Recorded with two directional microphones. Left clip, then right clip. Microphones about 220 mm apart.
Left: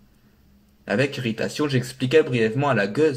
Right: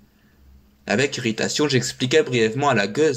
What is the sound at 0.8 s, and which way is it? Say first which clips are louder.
Speech: right 2 dB; 35° right (ahead or behind).